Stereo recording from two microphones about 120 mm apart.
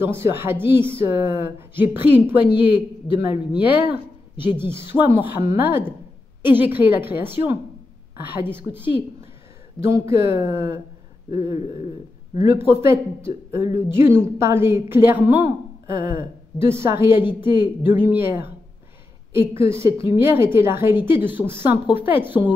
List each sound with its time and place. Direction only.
0.0 s speech: 20° right (ahead or behind)
3.5 s a woman's voice: 10° right (ahead or behind)
4.4 s speech: 45° left (ahead or behind)
4.6 s a woman's voice: 20° right (ahead or behind)